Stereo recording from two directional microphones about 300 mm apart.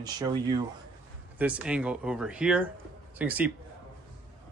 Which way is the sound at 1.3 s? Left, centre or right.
Centre.